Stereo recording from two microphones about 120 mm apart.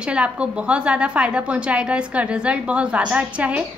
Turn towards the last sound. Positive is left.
turn(degrees=-10)  # may be behind; listen again after turning